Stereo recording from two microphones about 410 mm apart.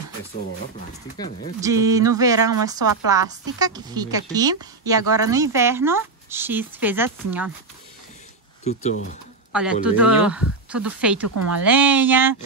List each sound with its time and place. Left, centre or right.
1.1 s speech: centre
1.6 s speech: centre
8.6 s speech: centre
9.5 s speech: centre